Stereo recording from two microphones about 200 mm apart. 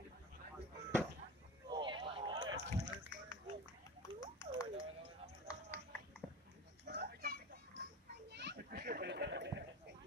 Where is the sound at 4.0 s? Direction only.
15° left (ahead or behind).